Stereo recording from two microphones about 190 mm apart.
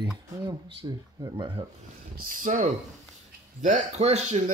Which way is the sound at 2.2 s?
45° right (ahead or behind).